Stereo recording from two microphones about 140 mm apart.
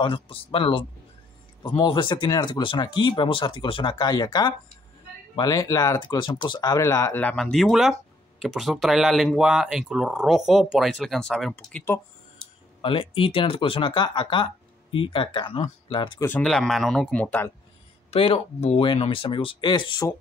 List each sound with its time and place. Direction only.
0.0 s speech: 40° left (ahead or behind); by 11.5 s 5° left (ahead or behind)
11.5 s speech: 15° left (ahead or behind)
12.8 s speech: 40° left (ahead or behind)
16.2 s speech: 15° left (ahead or behind)
16.4 s speech: centre (ahead or behind)
18.1 s speech: 45° left (ahead or behind)